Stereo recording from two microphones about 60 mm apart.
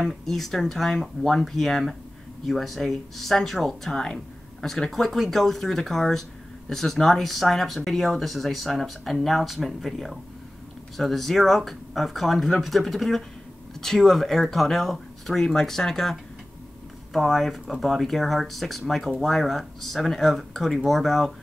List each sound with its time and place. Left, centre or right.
0.0 s speech: centre